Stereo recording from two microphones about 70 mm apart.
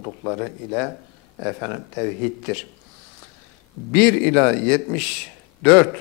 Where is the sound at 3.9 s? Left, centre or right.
Centre.